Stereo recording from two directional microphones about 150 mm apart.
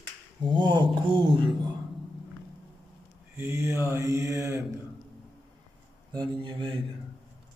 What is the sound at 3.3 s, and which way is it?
Mantra, 15° right (ahead or behind).